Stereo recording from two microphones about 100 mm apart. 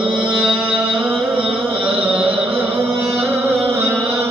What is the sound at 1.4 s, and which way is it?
Carnatic music, 15° right (ahead or behind).